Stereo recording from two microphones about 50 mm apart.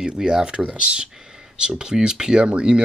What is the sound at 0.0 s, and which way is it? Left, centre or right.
Speech, centre.